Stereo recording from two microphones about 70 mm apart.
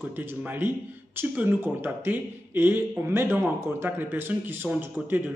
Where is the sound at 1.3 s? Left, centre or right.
Right.